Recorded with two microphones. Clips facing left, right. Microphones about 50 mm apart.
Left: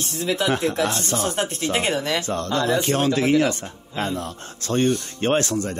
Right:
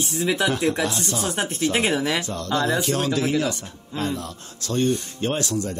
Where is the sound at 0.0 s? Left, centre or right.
Centre.